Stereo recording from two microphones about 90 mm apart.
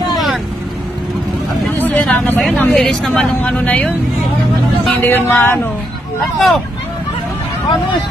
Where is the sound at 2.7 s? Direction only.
Centre (ahead or behind).